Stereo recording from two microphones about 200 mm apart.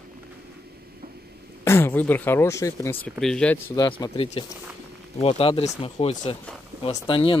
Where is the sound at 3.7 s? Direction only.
20° left (ahead or behind).